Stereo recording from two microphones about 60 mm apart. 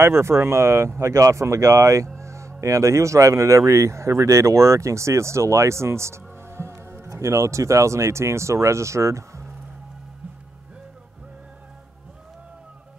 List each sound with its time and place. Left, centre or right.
0.0 s speech: right